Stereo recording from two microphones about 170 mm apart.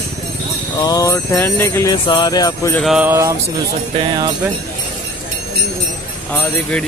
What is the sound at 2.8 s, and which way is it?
Speech, centre (ahead or behind).